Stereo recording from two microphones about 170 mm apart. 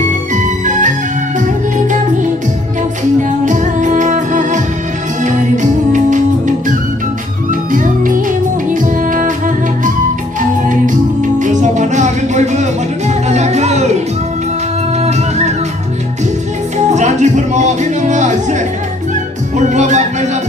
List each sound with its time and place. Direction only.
0.3 s music: 45° right (ahead or behind)
3.3 s music: 45° right (ahead or behind)
7.7 s music: 50° right (ahead or behind)
11.3 s music: 45° right (ahead or behind)
15.0 s music: 40° right (ahead or behind)
16.7 s music: 45° right (ahead or behind)